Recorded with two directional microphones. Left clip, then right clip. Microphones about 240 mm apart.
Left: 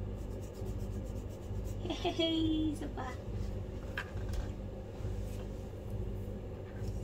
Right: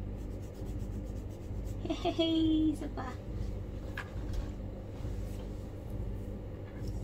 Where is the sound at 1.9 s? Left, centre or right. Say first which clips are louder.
Right 2 dB; right.